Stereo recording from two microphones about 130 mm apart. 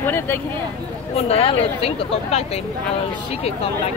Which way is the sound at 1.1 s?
50° left (ahead or behind).